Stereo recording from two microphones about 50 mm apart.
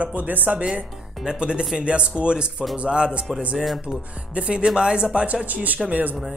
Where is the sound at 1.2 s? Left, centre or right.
Centre.